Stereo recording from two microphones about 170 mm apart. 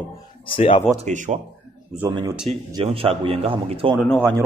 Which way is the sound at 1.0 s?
45° right (ahead or behind).